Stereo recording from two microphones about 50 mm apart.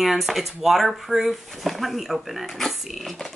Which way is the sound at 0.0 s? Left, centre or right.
Centre.